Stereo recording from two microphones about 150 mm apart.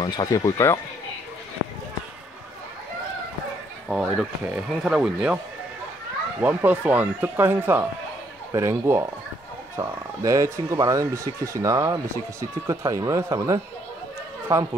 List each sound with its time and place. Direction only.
0.0 s speech: 25° left (ahead or behind)
3.9 s speech: 5° right (ahead or behind)
6.4 s speech: 10° right (ahead or behind)